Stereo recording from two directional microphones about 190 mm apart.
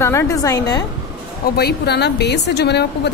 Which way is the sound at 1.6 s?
60° left (ahead or behind).